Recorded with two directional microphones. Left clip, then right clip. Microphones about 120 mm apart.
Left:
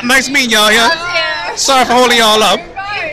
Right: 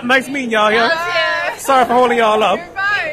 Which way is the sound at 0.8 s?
25° right (ahead or behind).